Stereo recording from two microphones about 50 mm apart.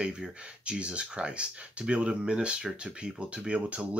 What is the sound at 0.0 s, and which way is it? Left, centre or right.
Speech, centre.